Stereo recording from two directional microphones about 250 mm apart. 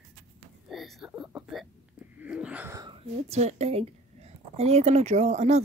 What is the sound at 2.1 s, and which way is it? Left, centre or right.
Speech, centre.